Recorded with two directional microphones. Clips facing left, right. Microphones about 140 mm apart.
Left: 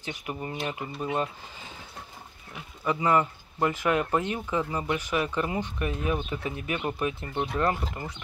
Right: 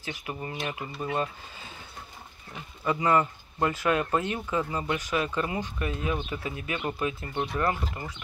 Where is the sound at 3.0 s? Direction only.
10° left (ahead or behind).